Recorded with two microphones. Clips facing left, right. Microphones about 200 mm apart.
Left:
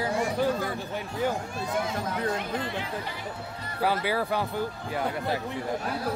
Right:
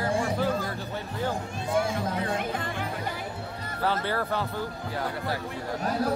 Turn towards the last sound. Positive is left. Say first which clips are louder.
# left 1 dB
turn(degrees=10)  # may be behind; listen again after turning